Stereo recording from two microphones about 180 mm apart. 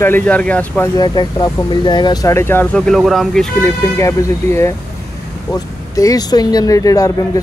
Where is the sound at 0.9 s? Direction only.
25° left (ahead or behind); by 3.5 s centre (ahead or behind).